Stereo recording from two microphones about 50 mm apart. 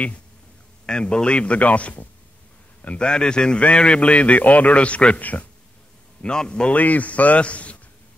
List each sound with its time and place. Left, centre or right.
0.8 s a man's voice: centre
6.2 s a man's voice: centre
6.7 s a man's voice: left